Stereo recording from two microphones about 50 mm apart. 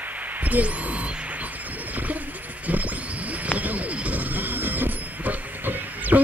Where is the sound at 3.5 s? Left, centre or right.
Right.